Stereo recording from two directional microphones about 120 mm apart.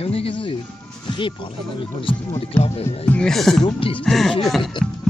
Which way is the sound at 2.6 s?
60° left (ahead or behind).